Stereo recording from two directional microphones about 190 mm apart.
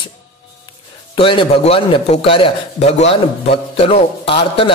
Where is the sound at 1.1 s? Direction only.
25° left (ahead or behind).